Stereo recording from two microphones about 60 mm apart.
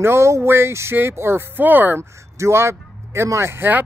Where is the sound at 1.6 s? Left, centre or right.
Right.